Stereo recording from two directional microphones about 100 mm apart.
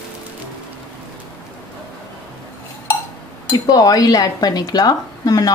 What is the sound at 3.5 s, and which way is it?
Speech, 40° left (ahead or behind).